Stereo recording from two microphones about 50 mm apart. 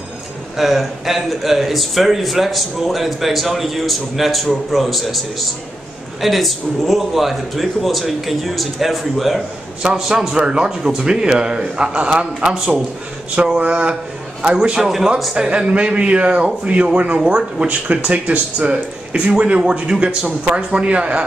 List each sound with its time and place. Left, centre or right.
0.6 s a man's voice: centre
6.2 s a man's voice: centre
13.4 s a man's voice: right